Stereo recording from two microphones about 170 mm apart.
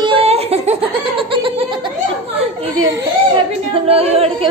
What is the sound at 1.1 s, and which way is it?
Laughter, 30° right (ahead or behind).